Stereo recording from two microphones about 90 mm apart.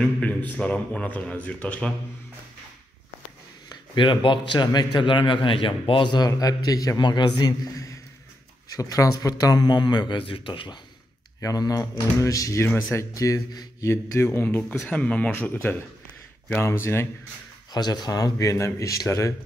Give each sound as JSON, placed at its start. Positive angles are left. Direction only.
{"t": 0.0, "sound": "a man's voice", "side_deg": 15}
{"t": 3.9, "sound": "a man's voice", "side_deg": 65}
{"t": 7.0, "sound": "a man's voice", "side_deg": 55}
{"t": 7.7, "sound": "a sound", "side_deg": 35}
{"t": 8.6, "sound": "speech", "side_deg": 40}
{"t": 11.4, "sound": "speech", "side_deg": 45}
{"t": 14.2, "sound": "a man's voice", "side_deg": 20}
{"t": 16.6, "sound": "speech", "side_deg": 30}
{"t": 17.7, "sound": "speech", "side_deg": 50}